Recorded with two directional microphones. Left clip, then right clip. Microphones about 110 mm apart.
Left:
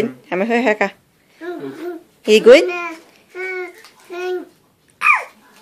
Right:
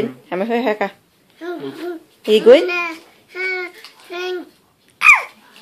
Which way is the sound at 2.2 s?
30° left (ahead or behind).